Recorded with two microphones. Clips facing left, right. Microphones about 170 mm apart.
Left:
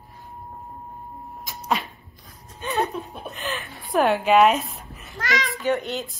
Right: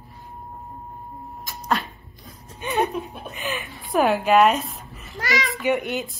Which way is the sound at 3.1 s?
Centre (ahead or behind).